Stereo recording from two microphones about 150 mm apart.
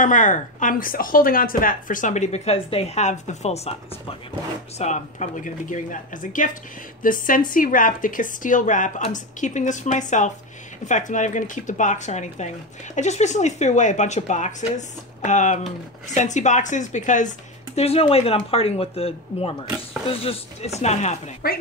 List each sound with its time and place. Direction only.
0.0 s a woman's voice: 60° left (ahead or behind)
4.7 s a woman's voice: 50° left (ahead or behind)
17.7 s speech: 40° left (ahead or behind)
21.4 s speech: 90° left